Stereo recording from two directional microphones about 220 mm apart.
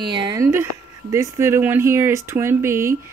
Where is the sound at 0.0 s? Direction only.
20° right (ahead or behind).